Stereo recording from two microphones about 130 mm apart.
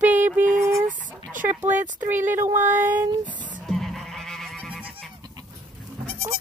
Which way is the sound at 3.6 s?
Centre (ahead or behind).